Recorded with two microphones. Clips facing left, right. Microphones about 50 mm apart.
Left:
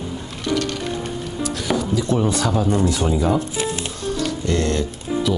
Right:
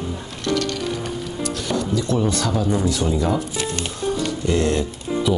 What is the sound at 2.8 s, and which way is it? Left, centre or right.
Speech, left.